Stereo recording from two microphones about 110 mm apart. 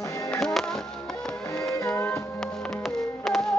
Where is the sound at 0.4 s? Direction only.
5° left (ahead or behind).